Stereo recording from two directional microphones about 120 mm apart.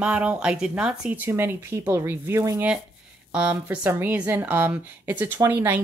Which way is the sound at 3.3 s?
10° right (ahead or behind).